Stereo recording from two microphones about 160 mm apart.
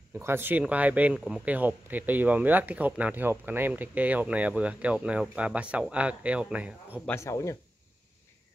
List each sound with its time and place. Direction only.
0.2 s speech: 15° right (ahead or behind)
7.1 s speech: 15° left (ahead or behind)